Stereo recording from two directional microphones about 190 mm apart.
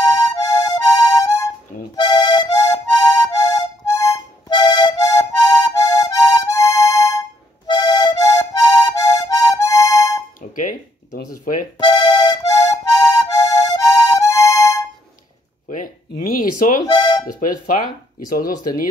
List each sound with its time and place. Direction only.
0.0 s music: 20° left (ahead or behind)
10.5 s music: 45° left (ahead or behind)
11.9 s music: 20° left (ahead or behind)
15.7 s a sound: 45° left (ahead or behind)
16.8 s music: 20° left (ahead or behind)